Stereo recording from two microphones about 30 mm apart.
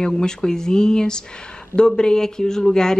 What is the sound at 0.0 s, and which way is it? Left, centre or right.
Speech, left.